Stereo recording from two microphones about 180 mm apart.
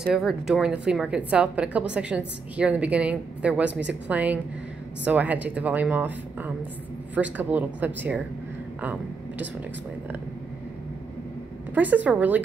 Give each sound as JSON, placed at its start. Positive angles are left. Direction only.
{"t": 0.1, "sound": "a woman's voice", "side_deg": 0}
{"t": 11.7, "sound": "a woman's voice", "side_deg": -10}